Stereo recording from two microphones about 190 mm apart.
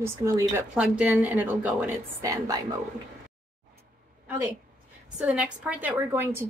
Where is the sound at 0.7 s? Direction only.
5° right (ahead or behind).